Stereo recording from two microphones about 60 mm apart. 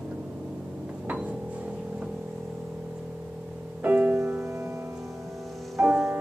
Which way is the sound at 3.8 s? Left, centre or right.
Right.